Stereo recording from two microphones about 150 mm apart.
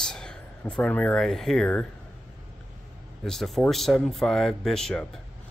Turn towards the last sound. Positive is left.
turn(degrees=5)  # may be behind; listen again after turning